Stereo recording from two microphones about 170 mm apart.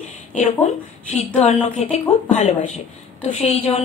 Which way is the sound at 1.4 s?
40° left (ahead or behind).